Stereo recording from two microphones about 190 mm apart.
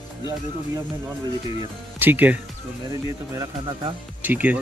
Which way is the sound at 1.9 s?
10° right (ahead or behind).